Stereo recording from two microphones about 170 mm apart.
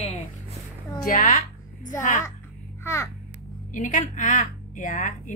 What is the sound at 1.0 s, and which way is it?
A woman's voice, 55° left (ahead or behind).